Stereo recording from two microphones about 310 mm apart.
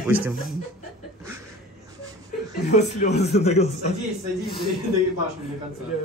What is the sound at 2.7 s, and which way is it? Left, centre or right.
Speech, left.